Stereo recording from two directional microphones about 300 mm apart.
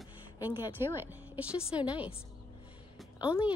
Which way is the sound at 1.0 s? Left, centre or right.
Centre.